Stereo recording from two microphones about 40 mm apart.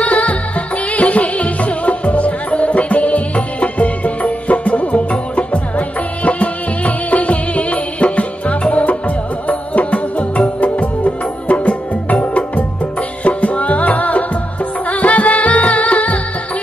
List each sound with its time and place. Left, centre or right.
0.0 s music: left